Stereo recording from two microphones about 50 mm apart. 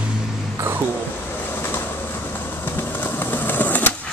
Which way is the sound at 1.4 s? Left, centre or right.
Left.